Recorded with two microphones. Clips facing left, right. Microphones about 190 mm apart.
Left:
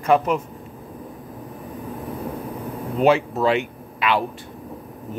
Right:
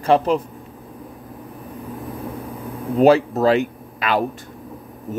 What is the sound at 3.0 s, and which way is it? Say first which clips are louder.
Speech: right 4 dB; 40° right (ahead or behind).